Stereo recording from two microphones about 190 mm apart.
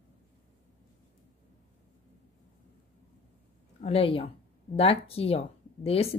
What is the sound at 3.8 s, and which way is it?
Speech, 30° left (ahead or behind).